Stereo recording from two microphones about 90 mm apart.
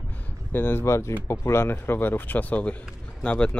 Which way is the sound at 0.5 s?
25° left (ahead or behind).